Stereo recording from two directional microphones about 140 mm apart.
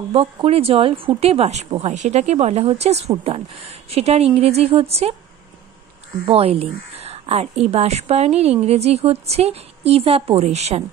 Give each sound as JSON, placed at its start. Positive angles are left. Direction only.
{"t": 0.1, "sound": "a woman's voice", "side_deg": -45}
{"t": 6.2, "sound": "a woman's voice", "side_deg": -45}